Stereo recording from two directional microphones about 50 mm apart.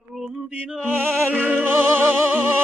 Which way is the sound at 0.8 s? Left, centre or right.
Right.